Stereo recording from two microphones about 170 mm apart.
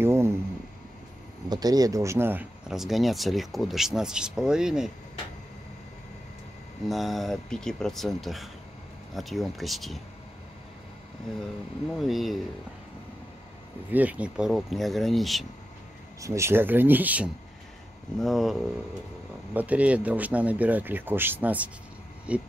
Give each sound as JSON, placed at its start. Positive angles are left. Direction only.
{"t": 0.0, "sound": "a sound", "side_deg": -15}
{"t": 1.5, "sound": "speech", "side_deg": -25}
{"t": 2.7, "sound": "speech", "side_deg": 0}
{"t": 6.9, "sound": "speech", "side_deg": 0}
{"t": 12.0, "sound": "speech", "side_deg": 0}
{"t": 13.8, "sound": "speech", "side_deg": -10}
{"t": 16.2, "sound": "speech", "side_deg": -15}